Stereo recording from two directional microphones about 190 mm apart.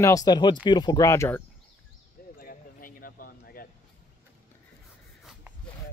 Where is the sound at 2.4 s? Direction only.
50° left (ahead or behind).